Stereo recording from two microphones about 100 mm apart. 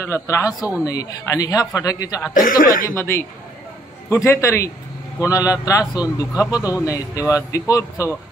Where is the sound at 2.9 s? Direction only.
25° left (ahead or behind).